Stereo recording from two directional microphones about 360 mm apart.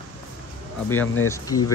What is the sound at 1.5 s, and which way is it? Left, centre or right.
Speech, left.